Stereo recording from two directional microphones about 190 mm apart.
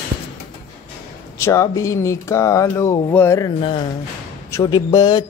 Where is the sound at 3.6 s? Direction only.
25° left (ahead or behind).